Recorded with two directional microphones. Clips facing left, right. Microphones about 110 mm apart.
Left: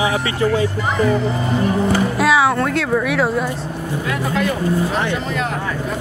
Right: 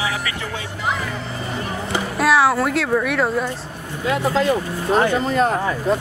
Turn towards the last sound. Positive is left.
turn(degrees=-40)  # may be behind; listen again after turning